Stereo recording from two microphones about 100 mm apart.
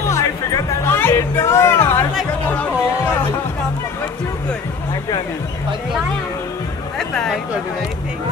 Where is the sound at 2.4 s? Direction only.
15° left (ahead or behind).